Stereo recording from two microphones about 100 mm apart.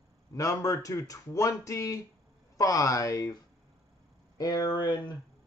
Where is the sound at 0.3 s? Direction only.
35° left (ahead or behind).